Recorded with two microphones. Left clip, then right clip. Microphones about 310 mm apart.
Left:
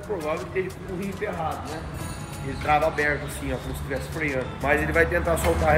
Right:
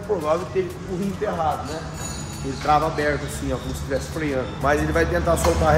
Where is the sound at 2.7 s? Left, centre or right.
Centre.